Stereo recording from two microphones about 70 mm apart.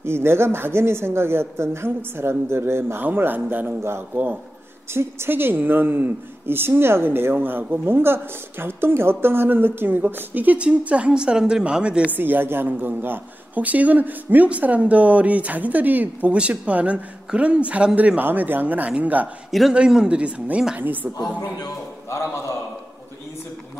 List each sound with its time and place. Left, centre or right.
0.0 s a woman's voice: right
4.9 s a woman's voice: right; by 12.2 s centre
12.2 s speech: right
21.2 s speech: left